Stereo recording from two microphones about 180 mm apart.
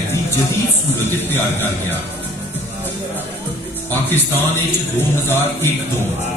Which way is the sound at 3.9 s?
10° left (ahead or behind).